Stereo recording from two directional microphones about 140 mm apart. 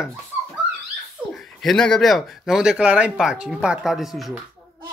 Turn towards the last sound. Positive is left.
turn(degrees=0)  # may be behind; listen again after turning